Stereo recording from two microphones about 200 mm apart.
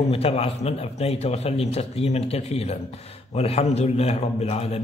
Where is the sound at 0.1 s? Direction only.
30° left (ahead or behind).